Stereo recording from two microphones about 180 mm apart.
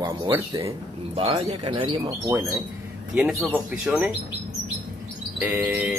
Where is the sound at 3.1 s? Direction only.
Centre (ahead or behind).